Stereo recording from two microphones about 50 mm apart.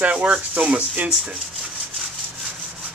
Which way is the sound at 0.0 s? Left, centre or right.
Right.